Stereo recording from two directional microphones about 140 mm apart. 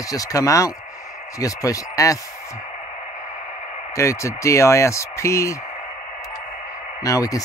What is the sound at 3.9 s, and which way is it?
Speech, 20° left (ahead or behind).